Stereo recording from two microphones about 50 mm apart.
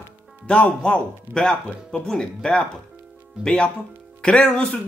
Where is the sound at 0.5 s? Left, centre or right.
Left.